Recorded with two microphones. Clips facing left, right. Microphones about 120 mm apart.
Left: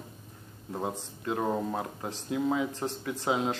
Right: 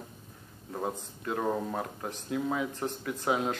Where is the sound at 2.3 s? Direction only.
25° left (ahead or behind).